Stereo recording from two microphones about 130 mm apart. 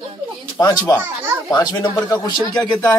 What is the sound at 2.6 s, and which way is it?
Speech, 10° left (ahead or behind).